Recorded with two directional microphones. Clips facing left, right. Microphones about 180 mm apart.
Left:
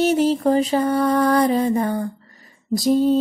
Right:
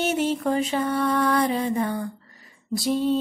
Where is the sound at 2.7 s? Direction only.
40° left (ahead or behind).